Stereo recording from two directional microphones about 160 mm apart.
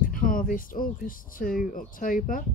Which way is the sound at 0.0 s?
60° left (ahead or behind).